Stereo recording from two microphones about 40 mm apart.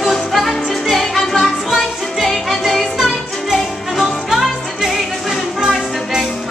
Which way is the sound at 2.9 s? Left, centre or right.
Centre.